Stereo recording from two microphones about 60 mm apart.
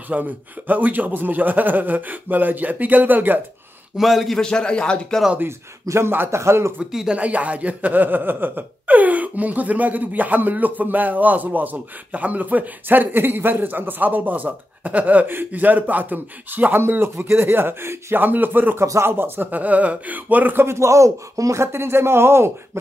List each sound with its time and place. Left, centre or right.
0.1 s speech: right
3.9 s a man's voice: centre
4.4 s speech: centre
5.9 s speech: right
6.3 s speech: right
6.8 s speech: centre
7.2 s speech: right
20.6 s a man's voice: right
21.7 s speech: right